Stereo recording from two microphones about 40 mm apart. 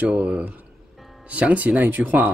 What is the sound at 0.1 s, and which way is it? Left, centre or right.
Speech, right.